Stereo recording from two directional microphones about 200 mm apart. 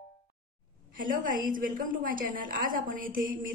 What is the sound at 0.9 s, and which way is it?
A woman's voice, 40° right (ahead or behind).